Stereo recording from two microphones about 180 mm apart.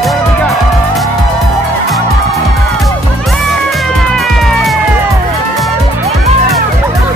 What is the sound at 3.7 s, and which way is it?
Music, centre (ahead or behind).